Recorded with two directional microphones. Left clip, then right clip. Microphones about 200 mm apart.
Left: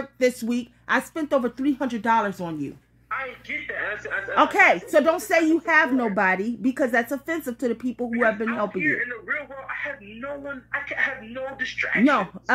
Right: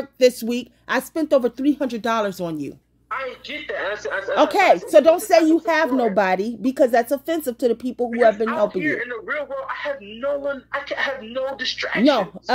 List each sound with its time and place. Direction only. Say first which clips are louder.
0.2 s speech: right 6 dB; 35° right (ahead or behind)